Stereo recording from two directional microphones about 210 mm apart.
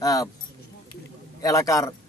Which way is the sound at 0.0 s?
15° left (ahead or behind).